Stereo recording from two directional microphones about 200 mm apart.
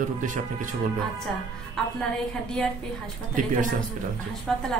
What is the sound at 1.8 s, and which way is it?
Speech, centre (ahead or behind).